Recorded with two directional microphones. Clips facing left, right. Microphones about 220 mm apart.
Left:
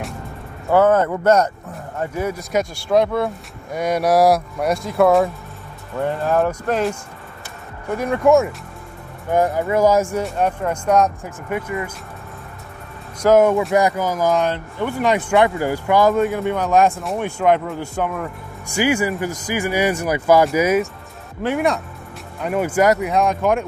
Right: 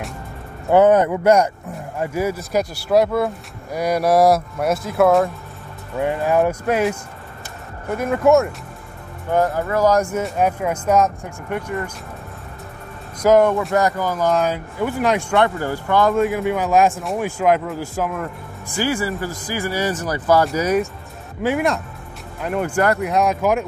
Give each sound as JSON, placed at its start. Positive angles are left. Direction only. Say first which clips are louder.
{"t": 0.7, "sound": "speech", "louder": "right 2 dB", "side_deg": -20}
{"t": 5.9, "sound": "speech", "louder": "right 1 dB", "side_deg": -10}
{"t": 9.3, "sound": "speech", "louder": "left 1 dB", "side_deg": 15}
{"t": 10.0, "sound": "speech", "louder": "right 1 dB", "side_deg": 0}
{"t": 13.2, "sound": "speech", "louder": "even", "side_deg": 0}
{"t": 13.7, "sound": "speech", "louder": "left 1 dB", "side_deg": 10}
{"t": 18.8, "sound": "speech", "louder": "left 3 dB", "side_deg": 15}